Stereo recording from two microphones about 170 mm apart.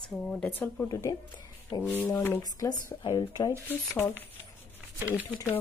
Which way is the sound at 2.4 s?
25° left (ahead or behind).